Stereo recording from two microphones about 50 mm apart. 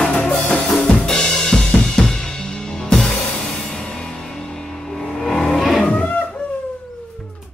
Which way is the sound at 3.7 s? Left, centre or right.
Centre.